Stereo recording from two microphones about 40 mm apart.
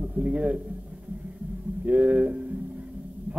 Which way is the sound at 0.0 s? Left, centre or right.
Right.